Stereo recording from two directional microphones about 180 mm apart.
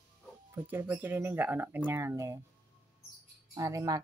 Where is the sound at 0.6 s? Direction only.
10° right (ahead or behind).